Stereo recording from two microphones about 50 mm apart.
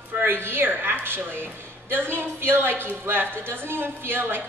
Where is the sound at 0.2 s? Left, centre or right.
Right.